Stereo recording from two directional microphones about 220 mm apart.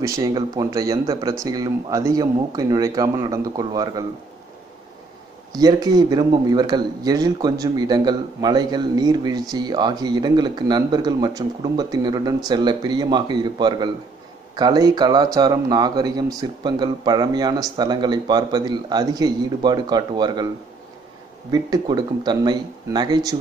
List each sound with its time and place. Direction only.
0.0 s speech: 15° right (ahead or behind)
5.5 s a man's voice: 20° right (ahead or behind)
21.5 s a man's voice: 15° right (ahead or behind)